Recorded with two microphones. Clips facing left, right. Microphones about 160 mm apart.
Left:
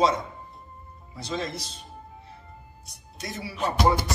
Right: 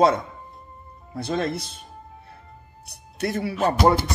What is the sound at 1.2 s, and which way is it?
Speech, 55° right (ahead or behind).